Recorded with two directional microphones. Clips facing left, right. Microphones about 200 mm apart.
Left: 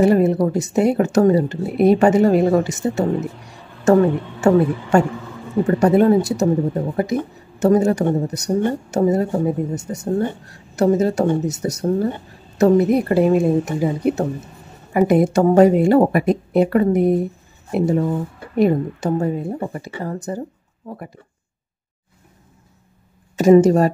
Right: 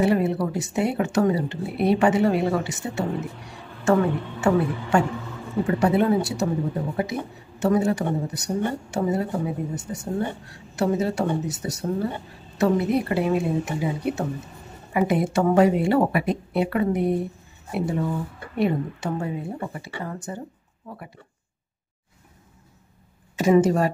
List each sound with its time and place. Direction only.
0.0 s a woman's voice: 45° left (ahead or behind)
23.3 s a woman's voice: 40° left (ahead or behind)